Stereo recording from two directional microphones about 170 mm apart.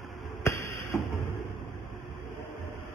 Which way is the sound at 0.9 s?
Centre (ahead or behind).